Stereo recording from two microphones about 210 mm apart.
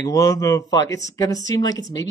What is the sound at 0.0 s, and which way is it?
Speech, 15° left (ahead or behind).